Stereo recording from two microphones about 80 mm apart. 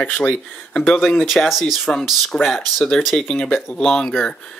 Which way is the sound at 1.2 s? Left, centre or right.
Centre.